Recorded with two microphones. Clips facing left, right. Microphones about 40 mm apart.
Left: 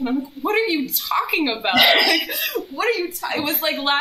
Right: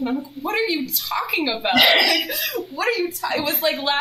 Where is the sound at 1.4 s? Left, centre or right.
Centre.